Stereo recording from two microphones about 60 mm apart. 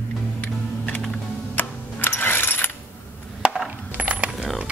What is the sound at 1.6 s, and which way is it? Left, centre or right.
Music, left.